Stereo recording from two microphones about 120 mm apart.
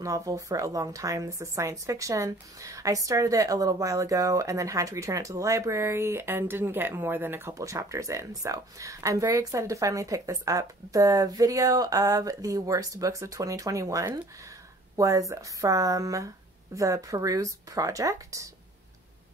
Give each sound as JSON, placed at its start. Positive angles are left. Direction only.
{"t": 0.0, "sound": "a woman's voice", "side_deg": -25}